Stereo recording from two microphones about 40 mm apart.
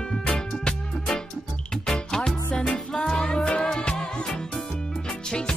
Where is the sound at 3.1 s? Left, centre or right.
Left.